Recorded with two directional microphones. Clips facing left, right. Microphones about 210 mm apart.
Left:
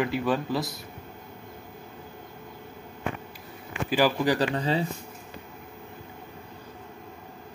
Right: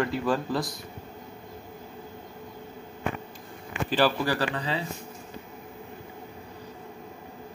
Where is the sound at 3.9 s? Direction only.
15° left (ahead or behind).